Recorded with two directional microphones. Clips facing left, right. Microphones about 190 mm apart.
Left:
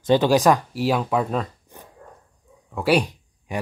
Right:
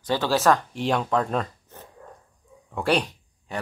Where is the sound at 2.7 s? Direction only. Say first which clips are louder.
Left 4 dB; 10° left (ahead or behind).